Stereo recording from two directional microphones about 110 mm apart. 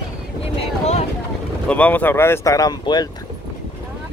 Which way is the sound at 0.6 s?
75° left (ahead or behind).